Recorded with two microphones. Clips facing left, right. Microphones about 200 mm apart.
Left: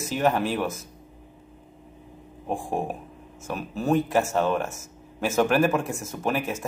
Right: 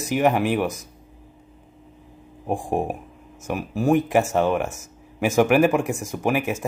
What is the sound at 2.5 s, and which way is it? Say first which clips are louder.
Speech: right 4 dB; 15° right (ahead or behind).